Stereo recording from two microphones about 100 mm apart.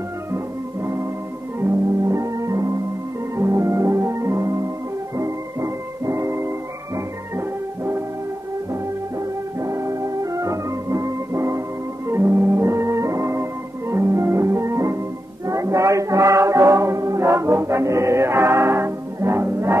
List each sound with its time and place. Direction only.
1.6 s music: 35° right (ahead or behind)
9.6 s music: 30° right (ahead or behind)